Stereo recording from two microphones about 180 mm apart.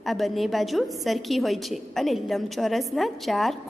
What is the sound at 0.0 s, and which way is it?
A woman's voice, centre (ahead or behind).